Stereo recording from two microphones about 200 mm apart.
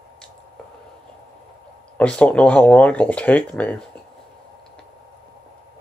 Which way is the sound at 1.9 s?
5° left (ahead or behind).